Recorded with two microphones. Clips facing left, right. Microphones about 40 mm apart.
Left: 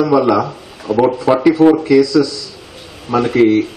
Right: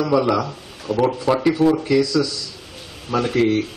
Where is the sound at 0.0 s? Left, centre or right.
Centre.